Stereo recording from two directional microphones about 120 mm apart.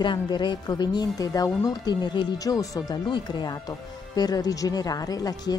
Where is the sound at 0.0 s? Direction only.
40° left (ahead or behind).